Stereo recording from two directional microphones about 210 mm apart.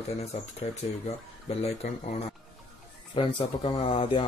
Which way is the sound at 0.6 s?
30° left (ahead or behind).